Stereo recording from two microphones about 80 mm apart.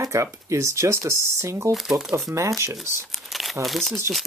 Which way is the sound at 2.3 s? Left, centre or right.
Right.